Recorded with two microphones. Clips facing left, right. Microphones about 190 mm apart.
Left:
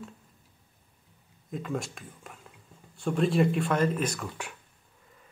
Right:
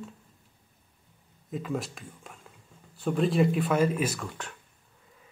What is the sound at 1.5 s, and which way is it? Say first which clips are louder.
Speech: right 1 dB; centre (ahead or behind).